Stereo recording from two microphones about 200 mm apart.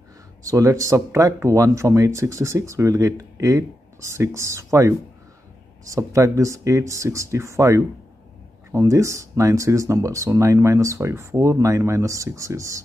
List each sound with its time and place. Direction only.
0.4 s speech: 15° right (ahead or behind)